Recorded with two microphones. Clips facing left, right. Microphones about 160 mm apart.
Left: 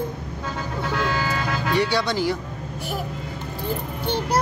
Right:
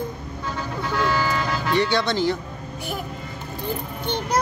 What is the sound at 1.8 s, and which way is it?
Speech, 10° left (ahead or behind).